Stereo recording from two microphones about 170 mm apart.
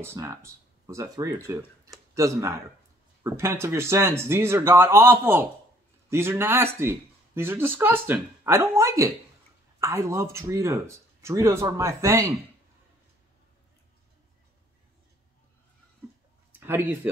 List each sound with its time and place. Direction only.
0.0 s speech: 15° right (ahead or behind)
16.5 s speech: 15° right (ahead or behind)